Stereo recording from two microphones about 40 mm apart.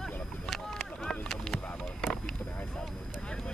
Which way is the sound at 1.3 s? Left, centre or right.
Centre.